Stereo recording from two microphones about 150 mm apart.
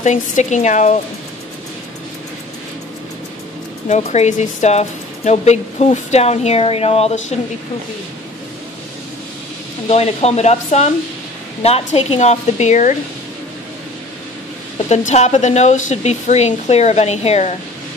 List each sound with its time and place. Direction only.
0.0 s speech: 55° left (ahead or behind)
3.9 s speech: 50° left (ahead or behind)
9.8 s speech: 45° left (ahead or behind)
14.9 s speech: 50° left (ahead or behind)